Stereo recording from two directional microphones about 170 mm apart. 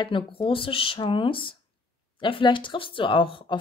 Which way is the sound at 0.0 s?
30° left (ahead or behind).